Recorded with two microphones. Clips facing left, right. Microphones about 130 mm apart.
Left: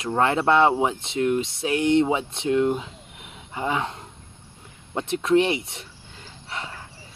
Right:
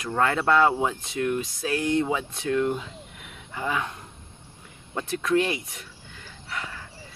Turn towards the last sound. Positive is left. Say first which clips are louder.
# left 1 dB
turn(degrees=25)  # may be behind; listen again after turning